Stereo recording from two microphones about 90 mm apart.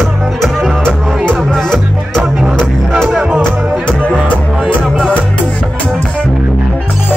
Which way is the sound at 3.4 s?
10° left (ahead or behind).